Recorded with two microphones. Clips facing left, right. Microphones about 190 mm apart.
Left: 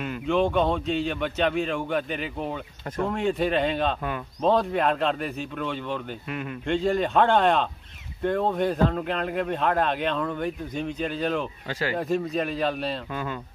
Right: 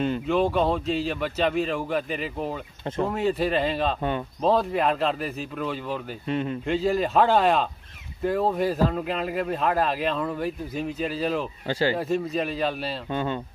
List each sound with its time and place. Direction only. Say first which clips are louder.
0.3 s a man's voice: left 2 dB; centre (ahead or behind)
6.2 s speech: right 6 dB; 30° right (ahead or behind)
6.6 s a man's voice: left 3 dB; 5° right (ahead or behind)
11.6 s speech: right 4 dB; 30° right (ahead or behind)
12.0 s a man's voice: even; centre (ahead or behind)
13.1 s speech: right 4 dB; 30° right (ahead or behind)